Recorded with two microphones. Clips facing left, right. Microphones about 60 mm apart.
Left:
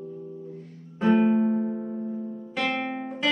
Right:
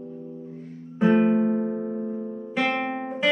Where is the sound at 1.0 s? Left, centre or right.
Centre; by 2.3 s right.